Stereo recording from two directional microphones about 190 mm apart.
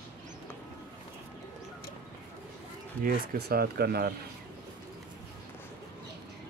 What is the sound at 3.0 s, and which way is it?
Speech, 55° right (ahead or behind).